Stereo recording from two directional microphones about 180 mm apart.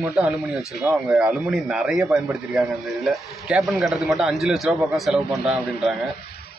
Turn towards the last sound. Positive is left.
turn(degrees=0)  # may be behind; listen again after turning